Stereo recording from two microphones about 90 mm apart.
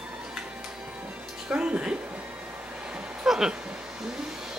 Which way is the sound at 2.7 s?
10° right (ahead or behind).